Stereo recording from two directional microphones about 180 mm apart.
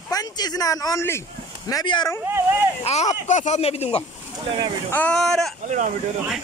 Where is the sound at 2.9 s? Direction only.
40° left (ahead or behind).